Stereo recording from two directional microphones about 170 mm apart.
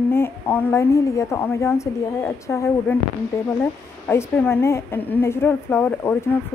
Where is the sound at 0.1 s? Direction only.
10° left (ahead or behind).